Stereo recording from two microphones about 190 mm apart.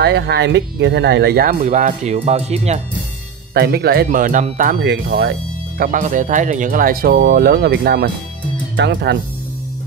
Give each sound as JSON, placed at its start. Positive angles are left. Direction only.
{"t": 0.0, "sound": "speech", "side_deg": -60}
{"t": 3.5, "sound": "speech", "side_deg": -60}
{"t": 4.8, "sound": "speech", "side_deg": -65}
{"t": 5.8, "sound": "speech", "side_deg": -45}